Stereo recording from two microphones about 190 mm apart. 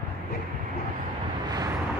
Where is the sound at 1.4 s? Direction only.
20° right (ahead or behind).